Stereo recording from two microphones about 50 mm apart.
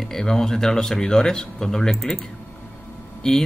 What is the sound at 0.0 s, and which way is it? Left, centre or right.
Speech, centre.